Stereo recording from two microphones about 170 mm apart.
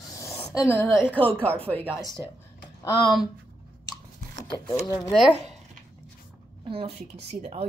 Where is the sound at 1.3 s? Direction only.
10° left (ahead or behind).